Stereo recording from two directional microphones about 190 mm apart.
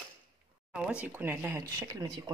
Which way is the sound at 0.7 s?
5° right (ahead or behind).